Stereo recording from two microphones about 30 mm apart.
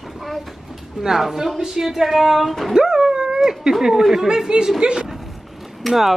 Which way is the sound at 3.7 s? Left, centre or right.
Centre.